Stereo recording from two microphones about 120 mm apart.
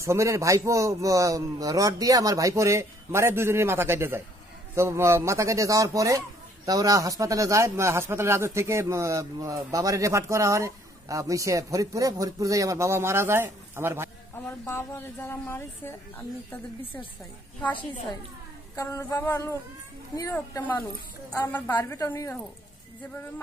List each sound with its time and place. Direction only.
0.0 s speech: 25° right (ahead or behind)
14.3 s a woman's voice: 20° left (ahead or behind)
18.8 s a woman's voice: 25° left (ahead or behind)
21.9 s a woman's voice: 25° left (ahead or behind)